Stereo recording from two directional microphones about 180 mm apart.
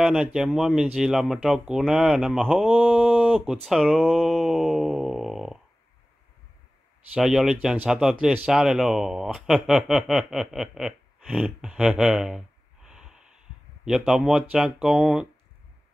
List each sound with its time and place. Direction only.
0.0 s speech: 5° right (ahead or behind)
7.2 s speech: centre (ahead or behind)